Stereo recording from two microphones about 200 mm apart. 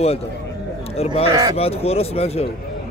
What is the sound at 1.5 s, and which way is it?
Speech, 30° left (ahead or behind).